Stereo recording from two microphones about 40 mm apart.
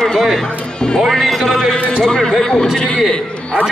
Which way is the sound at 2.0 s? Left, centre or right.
Centre.